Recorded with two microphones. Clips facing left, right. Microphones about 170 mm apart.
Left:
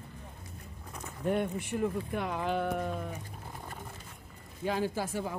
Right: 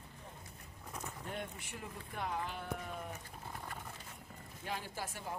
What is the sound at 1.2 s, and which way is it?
Speech, 60° left (ahead or behind).